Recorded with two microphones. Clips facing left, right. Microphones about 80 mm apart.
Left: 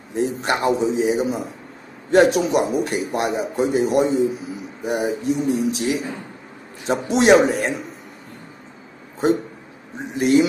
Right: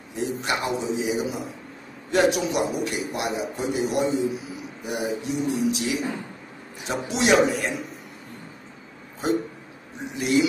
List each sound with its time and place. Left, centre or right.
0.1 s a man's voice: left
10.1 s a man's voice: left